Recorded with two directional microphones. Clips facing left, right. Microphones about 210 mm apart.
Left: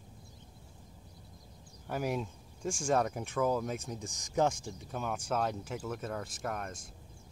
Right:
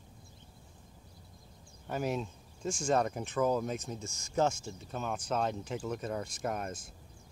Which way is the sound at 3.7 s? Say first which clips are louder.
Right 1 dB; 10° left (ahead or behind).